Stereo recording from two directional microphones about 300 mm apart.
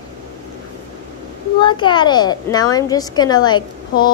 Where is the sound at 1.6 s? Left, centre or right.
Centre.